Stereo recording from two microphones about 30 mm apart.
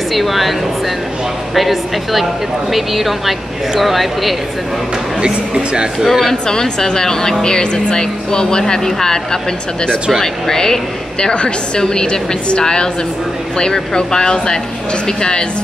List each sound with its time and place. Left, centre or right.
0.1 s speech: centre
5.2 s speech: right
6.0 s speech: centre
6.4 s speech: left